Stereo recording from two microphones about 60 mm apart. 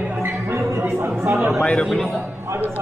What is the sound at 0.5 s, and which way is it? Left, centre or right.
Speech, right.